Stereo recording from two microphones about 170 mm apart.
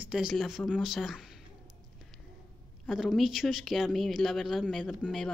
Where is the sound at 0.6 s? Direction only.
Centre (ahead or behind).